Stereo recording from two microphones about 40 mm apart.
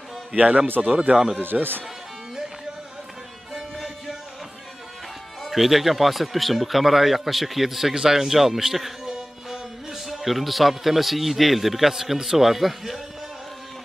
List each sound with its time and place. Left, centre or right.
0.3 s a man's voice: right
0.7 s speech: right
1.4 s speech: right
3.5 s music: centre
5.4 s speech: centre